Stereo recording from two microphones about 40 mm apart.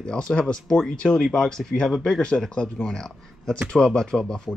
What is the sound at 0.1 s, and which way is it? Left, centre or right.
Speech, centre.